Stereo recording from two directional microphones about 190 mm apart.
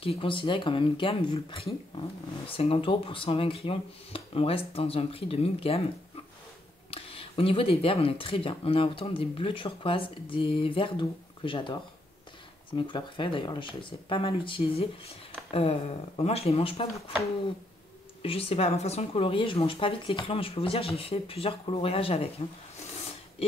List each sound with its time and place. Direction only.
0.0 s speech: 30° left (ahead or behind)
6.9 s speech: 30° left (ahead or behind)
18.2 s speech: 30° left (ahead or behind)